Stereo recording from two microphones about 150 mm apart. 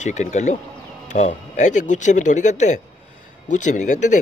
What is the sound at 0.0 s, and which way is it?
Speech, 50° left (ahead or behind).